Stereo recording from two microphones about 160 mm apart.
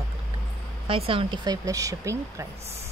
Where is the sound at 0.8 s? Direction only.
35° right (ahead or behind); by 2.4 s 20° right (ahead or behind).